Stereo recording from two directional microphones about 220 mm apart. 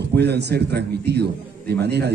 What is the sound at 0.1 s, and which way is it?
A man's voice, 50° right (ahead or behind).